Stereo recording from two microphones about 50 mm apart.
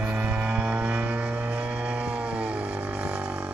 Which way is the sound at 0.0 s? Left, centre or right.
Right.